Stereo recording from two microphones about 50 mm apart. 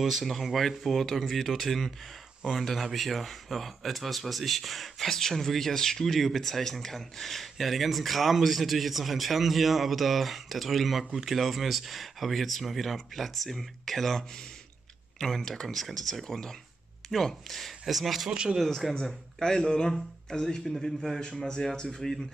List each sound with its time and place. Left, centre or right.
0.0 s speech: centre
18.3 s speech: centre
18.6 s speech: centre
18.9 s speech: centre